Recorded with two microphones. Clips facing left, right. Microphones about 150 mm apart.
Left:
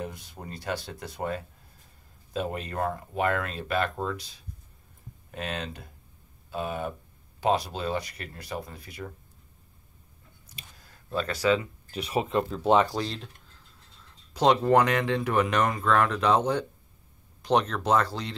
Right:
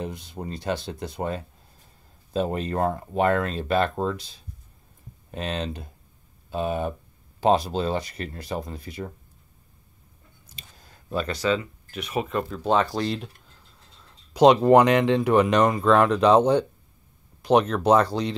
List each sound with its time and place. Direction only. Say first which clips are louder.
0.0 s speech: right 5 dB; 20° right (ahead or behind)
11.1 s speech: right 2 dB; 5° right (ahead or behind)
11.3 s speech: left 1 dB; 10° left (ahead or behind)
11.9 s speech: even; 30° left (ahead or behind)
14.3 s speech: right 6 dB; 15° right (ahead or behind)
17.4 s speech: right 5 dB; 10° right (ahead or behind)